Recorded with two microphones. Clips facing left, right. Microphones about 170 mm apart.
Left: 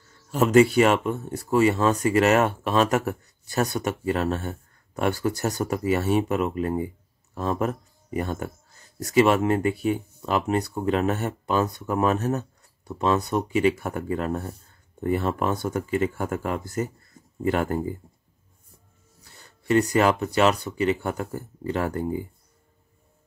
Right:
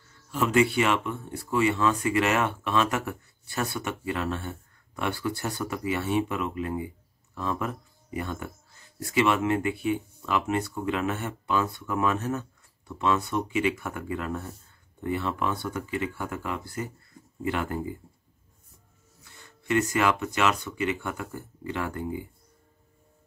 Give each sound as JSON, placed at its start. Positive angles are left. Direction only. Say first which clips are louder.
{"t": 0.3, "sound": "speech", "louder": "left 6 dB", "side_deg": 40}
{"t": 19.2, "sound": "speech", "louder": "left 5 dB", "side_deg": 35}